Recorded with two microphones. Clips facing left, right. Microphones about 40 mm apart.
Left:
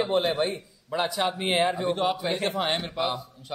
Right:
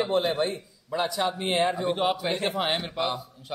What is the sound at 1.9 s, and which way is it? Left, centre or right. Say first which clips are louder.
A man's voice: even; centre.